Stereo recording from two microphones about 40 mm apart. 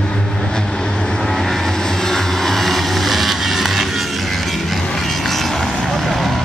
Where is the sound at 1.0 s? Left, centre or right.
Centre.